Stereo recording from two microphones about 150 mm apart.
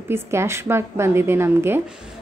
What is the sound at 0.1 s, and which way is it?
A woman's voice, 15° right (ahead or behind).